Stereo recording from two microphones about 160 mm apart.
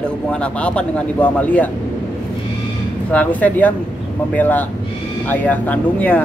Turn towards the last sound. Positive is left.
turn(degrees=10)  # may be behind; listen again after turning